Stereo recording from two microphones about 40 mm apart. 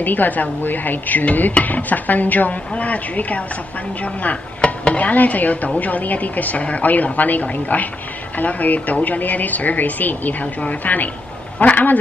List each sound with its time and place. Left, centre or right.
0.0 s speech: left
4.6 s stir: left
4.9 s speech: left